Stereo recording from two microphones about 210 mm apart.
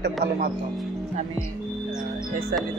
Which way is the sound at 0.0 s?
50° right (ahead or behind).